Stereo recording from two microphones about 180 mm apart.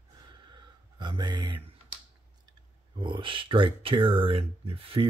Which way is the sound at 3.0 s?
25° right (ahead or behind).